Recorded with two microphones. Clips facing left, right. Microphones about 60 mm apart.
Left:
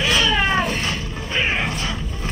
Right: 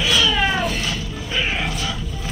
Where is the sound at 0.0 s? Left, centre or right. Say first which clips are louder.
Even; left.